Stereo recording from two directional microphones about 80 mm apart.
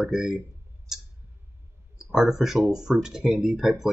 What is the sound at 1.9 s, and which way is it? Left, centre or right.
Speech, centre.